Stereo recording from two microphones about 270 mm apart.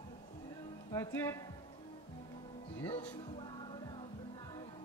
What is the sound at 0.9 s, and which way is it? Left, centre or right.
Speech, centre.